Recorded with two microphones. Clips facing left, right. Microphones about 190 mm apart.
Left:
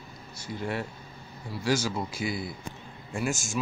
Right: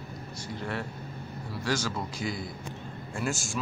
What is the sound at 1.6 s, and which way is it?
Speech, 10° left (ahead or behind).